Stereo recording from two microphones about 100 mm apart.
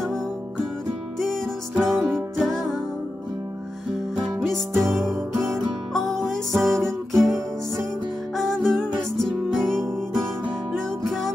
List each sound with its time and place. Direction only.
1.2 s music: 5° left (ahead or behind)
2.0 s music: 20° right (ahead or behind)
2.3 s music: 5° left (ahead or behind)
4.8 s music: 5° left (ahead or behind)
8.4 s music: 5° left (ahead or behind)
11.1 s music: 5° left (ahead or behind)